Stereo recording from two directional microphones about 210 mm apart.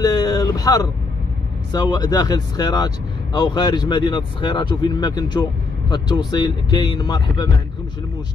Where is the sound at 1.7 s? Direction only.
20° left (ahead or behind).